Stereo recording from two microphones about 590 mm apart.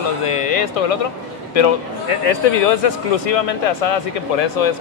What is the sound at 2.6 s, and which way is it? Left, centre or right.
Speech, left.